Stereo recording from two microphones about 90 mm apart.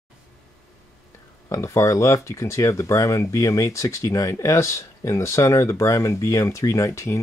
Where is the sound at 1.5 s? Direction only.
35° left (ahead or behind).